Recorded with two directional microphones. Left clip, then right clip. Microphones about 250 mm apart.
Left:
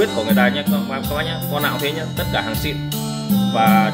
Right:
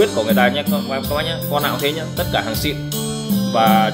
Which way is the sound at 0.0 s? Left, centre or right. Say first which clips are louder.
Right 2 dB; centre.